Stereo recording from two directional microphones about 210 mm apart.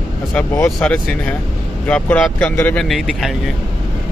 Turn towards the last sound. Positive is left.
turn(degrees=0)  # may be behind; listen again after turning